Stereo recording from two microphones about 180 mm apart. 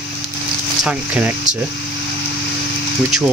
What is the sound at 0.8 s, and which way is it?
Speech, 5° right (ahead or behind).